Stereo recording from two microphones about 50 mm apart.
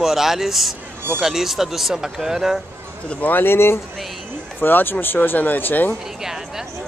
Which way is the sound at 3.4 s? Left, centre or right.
Left.